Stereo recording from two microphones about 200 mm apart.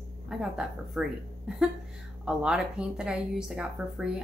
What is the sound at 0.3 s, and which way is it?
Speech, centre (ahead or behind).